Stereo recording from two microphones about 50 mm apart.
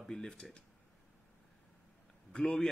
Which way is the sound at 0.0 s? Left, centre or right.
Centre.